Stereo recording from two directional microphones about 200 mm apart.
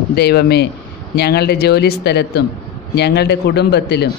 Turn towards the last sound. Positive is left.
turn(degrees=55)  # may be behind; listen again after turning